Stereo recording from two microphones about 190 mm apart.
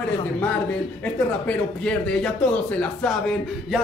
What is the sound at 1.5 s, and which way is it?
Speech, 5° left (ahead or behind).